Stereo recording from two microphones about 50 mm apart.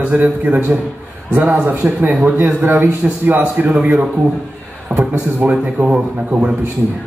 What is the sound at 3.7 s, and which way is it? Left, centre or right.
A man's voice, right.